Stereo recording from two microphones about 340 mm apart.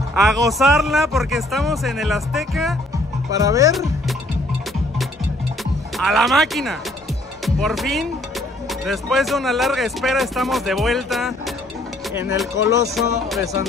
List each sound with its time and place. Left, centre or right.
0.1 s speech: centre
5.9 s speech: centre